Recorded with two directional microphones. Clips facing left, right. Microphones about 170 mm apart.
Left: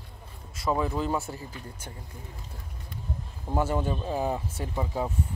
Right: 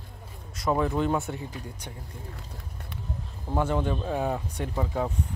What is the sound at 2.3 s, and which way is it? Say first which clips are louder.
Speech: right 2 dB; 70° right (ahead or behind).